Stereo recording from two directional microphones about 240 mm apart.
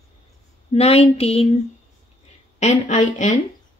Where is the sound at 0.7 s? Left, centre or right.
Left.